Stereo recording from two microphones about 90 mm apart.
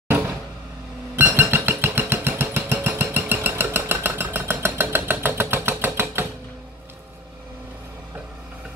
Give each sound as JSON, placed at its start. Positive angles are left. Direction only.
{"t": 1.1, "sound": "vehicle", "side_deg": -20}